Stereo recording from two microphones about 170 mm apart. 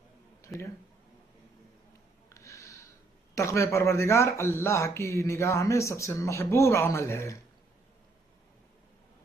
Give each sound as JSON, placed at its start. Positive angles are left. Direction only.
{"t": 0.4, "sound": "a sound", "side_deg": 15}
{"t": 2.2, "sound": "snort", "side_deg": 15}
{"t": 3.3, "sound": "a man's voice", "side_deg": 15}